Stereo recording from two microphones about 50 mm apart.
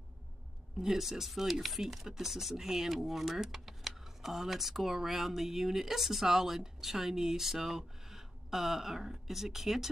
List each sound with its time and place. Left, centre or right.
0.7 s speech: centre